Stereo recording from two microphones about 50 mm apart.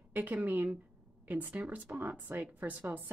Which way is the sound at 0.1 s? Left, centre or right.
Right.